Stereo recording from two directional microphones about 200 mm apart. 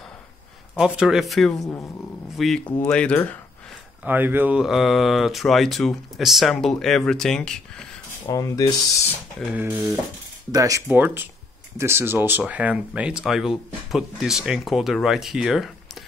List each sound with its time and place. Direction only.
0.7 s speech: 5° right (ahead or behind)
1.6 s speech: 15° left (ahead or behind)
2.3 s speech: centre (ahead or behind)
4.0 s speech: 10° right (ahead or behind)
8.3 s speech: 15° left (ahead or behind)
9.5 s speech: 10° right (ahead or behind)